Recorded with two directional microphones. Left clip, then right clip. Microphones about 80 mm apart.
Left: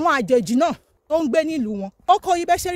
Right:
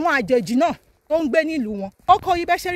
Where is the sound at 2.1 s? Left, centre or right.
Left.